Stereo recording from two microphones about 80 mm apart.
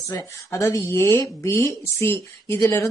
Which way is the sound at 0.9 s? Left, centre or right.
Left.